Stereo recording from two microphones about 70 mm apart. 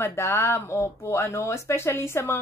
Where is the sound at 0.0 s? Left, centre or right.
Left.